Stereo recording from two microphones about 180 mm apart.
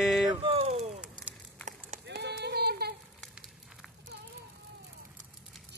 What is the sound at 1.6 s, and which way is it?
Run, 40° right (ahead or behind).